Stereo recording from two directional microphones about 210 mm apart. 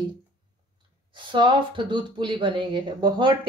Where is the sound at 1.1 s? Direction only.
20° right (ahead or behind).